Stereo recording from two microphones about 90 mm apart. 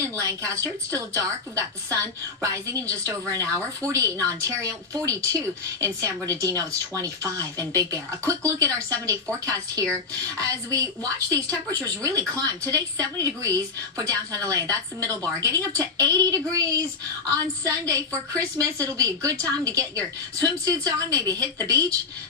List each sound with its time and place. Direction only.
0.4 s a woman's voice: 35° right (ahead or behind)